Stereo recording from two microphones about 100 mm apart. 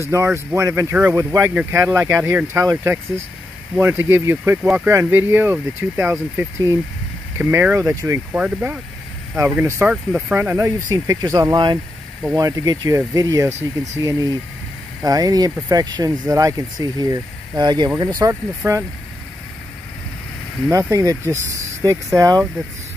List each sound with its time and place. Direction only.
0.0 s speech: 25° right (ahead or behind)
1.5 s speech: 15° right (ahead or behind)
1.9 s speech: 25° right (ahead or behind)
8.3 s speech: 15° right (ahead or behind)
10.9 s speech: 35° right (ahead or behind)
11.5 s speech: 50° right (ahead or behind)
12.4 s speech: 35° right (ahead or behind)
18.6 s speech: 20° right (ahead or behind)
20.7 s speech: 35° right (ahead or behind)